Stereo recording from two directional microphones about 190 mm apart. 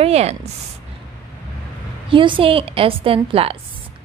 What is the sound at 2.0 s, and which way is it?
A woman's voice, 25° right (ahead or behind).